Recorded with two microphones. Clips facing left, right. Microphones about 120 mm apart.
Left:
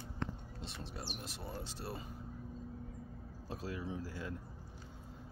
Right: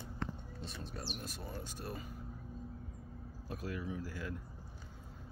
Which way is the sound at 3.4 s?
25° left (ahead or behind).